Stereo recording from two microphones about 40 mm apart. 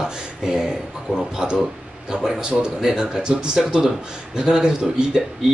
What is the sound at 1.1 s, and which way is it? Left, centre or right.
Speech, centre.